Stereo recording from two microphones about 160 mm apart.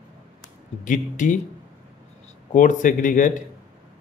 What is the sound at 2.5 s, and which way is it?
Speech, 50° left (ahead or behind).